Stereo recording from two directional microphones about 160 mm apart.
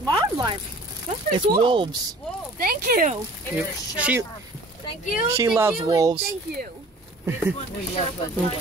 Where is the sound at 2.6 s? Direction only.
65° right (ahead or behind).